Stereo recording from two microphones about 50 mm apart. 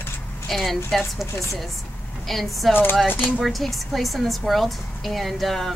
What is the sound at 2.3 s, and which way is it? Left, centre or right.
A woman's voice, centre.